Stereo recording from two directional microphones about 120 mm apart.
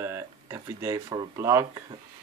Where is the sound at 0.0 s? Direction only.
20° right (ahead or behind).